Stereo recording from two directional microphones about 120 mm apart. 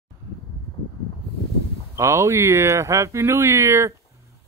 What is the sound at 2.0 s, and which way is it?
Speech, 25° right (ahead or behind).